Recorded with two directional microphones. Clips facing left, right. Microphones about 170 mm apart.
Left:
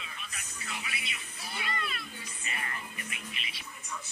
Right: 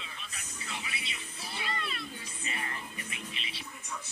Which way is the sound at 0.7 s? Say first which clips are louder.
Even; 30° right (ahead or behind).